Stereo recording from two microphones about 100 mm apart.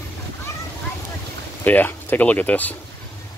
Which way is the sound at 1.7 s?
20° left (ahead or behind).